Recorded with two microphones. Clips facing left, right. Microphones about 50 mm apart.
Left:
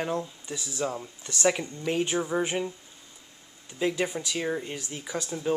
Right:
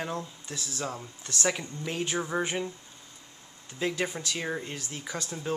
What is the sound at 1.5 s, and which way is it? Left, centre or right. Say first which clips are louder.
Speech: left 6 dB; centre.